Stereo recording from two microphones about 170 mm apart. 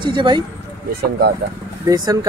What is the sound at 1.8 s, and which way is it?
Speech, 20° right (ahead or behind).